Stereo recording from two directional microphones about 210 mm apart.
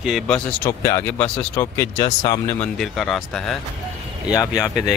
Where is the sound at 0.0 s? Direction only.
Centre (ahead or behind).